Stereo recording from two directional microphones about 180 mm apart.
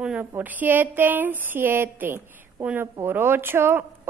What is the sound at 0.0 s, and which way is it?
Speech, 10° right (ahead or behind).